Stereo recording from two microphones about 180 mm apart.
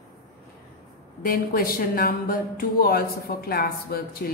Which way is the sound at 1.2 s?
55° left (ahead or behind).